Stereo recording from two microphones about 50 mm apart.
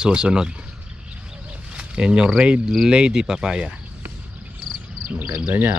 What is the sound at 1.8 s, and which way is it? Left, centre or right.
Speech, centre.